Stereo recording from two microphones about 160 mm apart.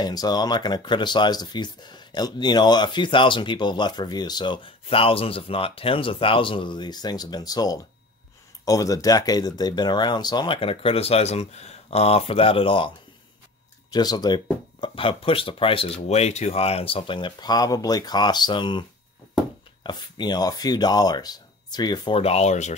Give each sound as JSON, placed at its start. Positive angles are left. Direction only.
{"t": 0.0, "sound": "speech", "side_deg": 25}